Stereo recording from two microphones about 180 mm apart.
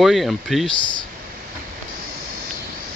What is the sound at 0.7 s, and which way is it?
Speech, 25° left (ahead or behind).